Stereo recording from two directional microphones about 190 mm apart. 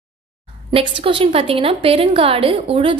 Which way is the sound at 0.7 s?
30° right (ahead or behind).